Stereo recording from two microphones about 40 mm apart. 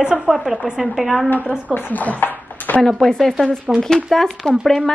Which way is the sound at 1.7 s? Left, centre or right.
Left.